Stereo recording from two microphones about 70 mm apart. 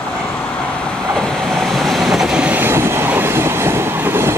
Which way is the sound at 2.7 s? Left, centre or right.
Right.